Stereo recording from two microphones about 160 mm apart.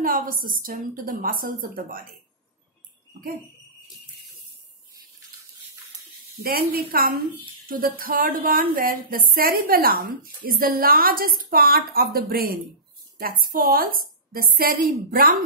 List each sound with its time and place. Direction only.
0.0 s a woman's voice: 60° right (ahead or behind)
6.4 s a woman's voice: 65° right (ahead or behind)